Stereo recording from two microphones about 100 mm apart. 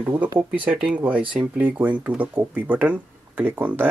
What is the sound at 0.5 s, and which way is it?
Speech, 10° right (ahead or behind).